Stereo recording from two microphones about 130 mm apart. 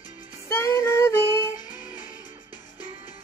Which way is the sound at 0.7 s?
20° left (ahead or behind).